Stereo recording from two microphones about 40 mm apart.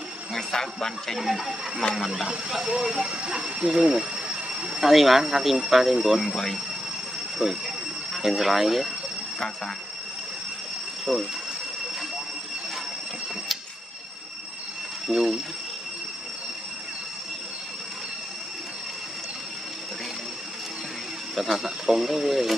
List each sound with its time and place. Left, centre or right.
0.3 s speech: centre
1.2 s speech: centre
2.2 s speech: centre
4.8 s speech: centre
6.3 s speech: centre
7.3 s speech: centre
11.1 s speech: centre
15.0 s speech: centre
21.4 s speech: centre